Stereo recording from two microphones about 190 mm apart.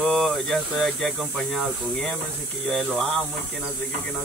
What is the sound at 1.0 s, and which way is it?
Speech, centre (ahead or behind).